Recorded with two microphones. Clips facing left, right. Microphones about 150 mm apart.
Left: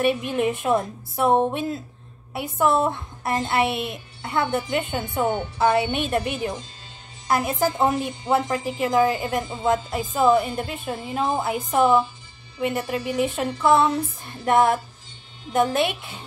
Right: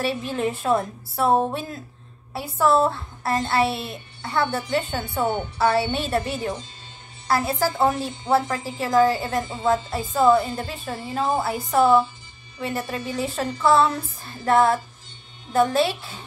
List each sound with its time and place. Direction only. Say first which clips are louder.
0.0 s a woman's voice: left 3 dB; 20° left (ahead or behind)